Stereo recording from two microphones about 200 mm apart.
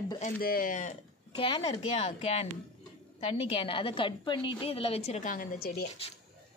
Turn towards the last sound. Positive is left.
turn(degrees=50)  # may be behind; listen again after turning